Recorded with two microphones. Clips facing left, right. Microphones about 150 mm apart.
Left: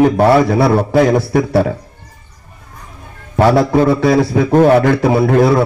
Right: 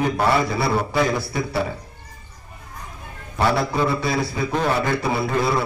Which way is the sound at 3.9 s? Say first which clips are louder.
Left 11 dB; 85° left.